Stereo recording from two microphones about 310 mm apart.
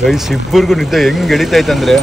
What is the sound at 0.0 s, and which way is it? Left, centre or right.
Speech, centre.